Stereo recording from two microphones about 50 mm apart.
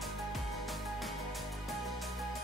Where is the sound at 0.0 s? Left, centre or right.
Centre.